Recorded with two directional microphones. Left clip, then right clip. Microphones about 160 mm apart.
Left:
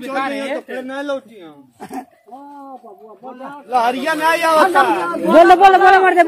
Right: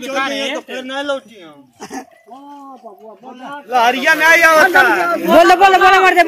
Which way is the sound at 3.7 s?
35° right (ahead or behind).